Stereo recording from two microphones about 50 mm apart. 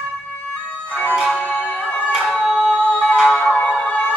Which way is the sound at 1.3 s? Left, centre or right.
Left.